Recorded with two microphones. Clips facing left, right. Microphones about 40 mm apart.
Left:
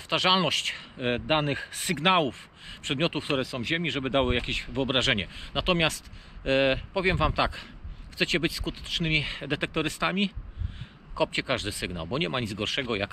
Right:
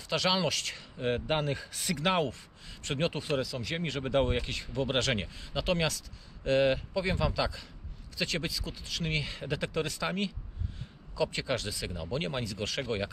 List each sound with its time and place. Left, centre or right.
0.0 s speech: left